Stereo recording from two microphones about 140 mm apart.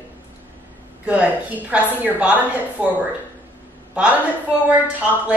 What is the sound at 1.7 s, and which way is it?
A woman's voice, 10° right (ahead or behind).